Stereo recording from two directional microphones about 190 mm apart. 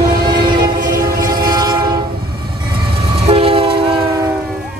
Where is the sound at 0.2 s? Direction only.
20° right (ahead or behind).